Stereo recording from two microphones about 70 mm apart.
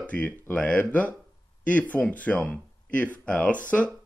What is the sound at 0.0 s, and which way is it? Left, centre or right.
Speech, left.